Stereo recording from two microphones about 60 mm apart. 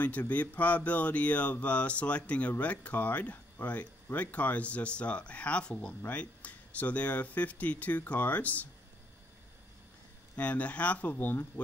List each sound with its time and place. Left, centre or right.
0.0 s speech: left
10.3 s speech: left